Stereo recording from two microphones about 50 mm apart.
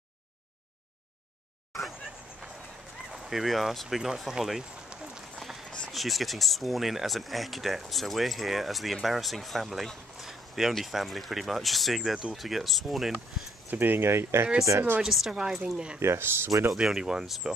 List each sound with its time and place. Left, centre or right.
1.7 s vehicle: centre
3.2 s speech: centre
5.4 s a sound: centre
5.9 s speech: centre
10.2 s a sound: centre
10.7 s speech: centre
12.0 s speech: centre
13.7 s speech: right
15.0 s speech: centre
16.0 s speech: right
16.7 s speech: centre